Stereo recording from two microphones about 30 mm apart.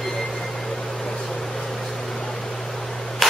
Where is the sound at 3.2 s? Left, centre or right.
Centre.